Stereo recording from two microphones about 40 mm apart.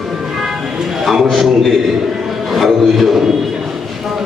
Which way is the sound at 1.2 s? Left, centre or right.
Centre.